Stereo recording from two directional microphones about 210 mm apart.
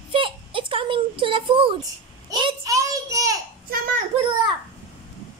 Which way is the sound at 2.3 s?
20° right (ahead or behind).